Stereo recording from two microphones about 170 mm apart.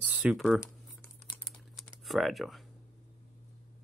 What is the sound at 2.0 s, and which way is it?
Speech, centre (ahead or behind).